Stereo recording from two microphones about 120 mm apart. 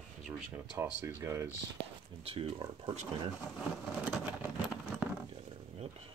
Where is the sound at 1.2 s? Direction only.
25° right (ahead or behind).